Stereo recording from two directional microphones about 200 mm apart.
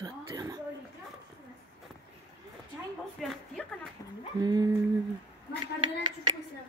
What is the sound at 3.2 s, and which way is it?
Speech, centre (ahead or behind).